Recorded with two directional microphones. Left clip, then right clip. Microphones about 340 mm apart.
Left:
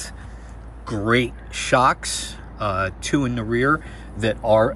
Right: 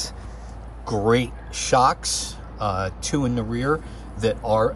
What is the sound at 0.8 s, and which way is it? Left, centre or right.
Speech, centre.